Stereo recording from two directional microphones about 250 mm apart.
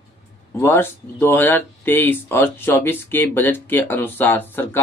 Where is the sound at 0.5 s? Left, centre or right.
Centre.